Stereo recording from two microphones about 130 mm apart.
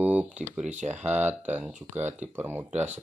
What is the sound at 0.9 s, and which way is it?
Speech, 60° right (ahead or behind).